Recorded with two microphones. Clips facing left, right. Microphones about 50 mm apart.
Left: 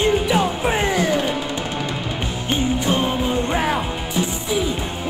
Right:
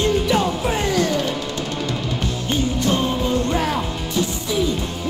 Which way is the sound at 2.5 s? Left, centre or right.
Left.